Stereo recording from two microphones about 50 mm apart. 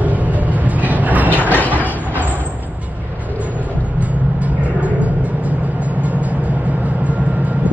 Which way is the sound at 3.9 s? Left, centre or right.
Right.